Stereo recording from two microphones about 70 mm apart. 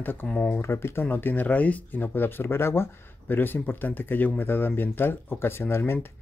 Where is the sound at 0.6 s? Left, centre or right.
Left.